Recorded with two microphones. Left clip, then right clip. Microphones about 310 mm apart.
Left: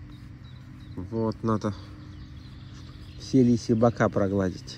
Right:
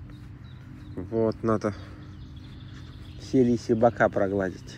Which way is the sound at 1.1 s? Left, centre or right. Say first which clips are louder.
Right 3 dB; centre.